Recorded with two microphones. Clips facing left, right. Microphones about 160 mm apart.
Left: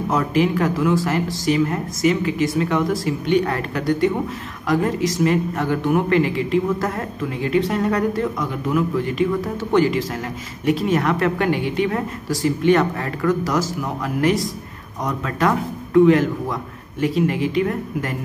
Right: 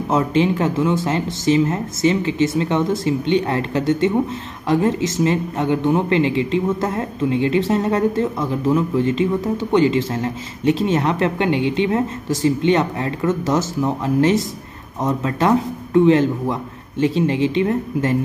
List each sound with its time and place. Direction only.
0.1 s speech: 25° right (ahead or behind)